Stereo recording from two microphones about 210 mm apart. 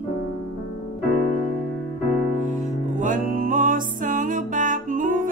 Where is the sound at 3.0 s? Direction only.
40° right (ahead or behind).